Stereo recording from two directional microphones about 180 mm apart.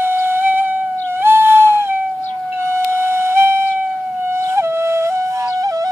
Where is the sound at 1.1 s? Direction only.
15° right (ahead or behind).